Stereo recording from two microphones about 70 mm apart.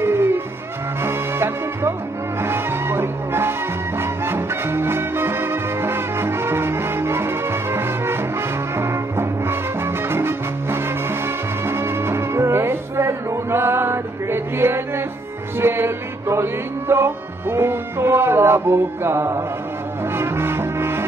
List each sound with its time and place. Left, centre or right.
0.0 s music: right